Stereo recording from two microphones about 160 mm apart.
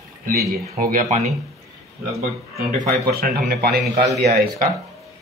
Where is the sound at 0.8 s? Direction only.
55° right (ahead or behind).